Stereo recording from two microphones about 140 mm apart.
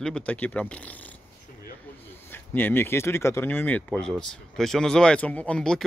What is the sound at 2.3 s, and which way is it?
Speech, 15° left (ahead or behind).